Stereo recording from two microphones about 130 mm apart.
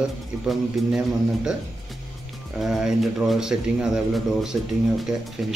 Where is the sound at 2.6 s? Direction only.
5° right (ahead or behind).